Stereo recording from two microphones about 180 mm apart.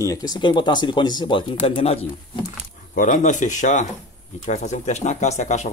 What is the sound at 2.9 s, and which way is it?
Speech, 45° left (ahead or behind).